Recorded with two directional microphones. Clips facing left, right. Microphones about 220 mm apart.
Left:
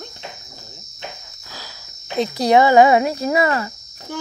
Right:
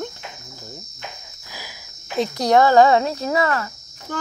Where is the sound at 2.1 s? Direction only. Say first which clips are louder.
Left 2 dB; centre (ahead or behind).